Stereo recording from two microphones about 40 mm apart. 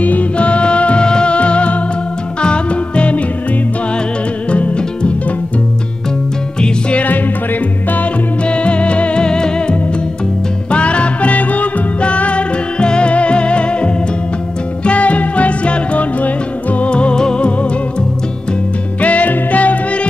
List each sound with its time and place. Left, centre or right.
0.0 s music: left
4.5 s music: left
6.6 s music: left
8.5 s music: left
18.9 s music: left